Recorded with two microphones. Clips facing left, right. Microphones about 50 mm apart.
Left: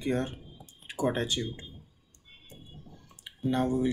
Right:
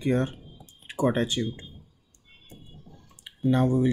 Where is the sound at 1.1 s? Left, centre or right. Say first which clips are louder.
Right 4 dB; right.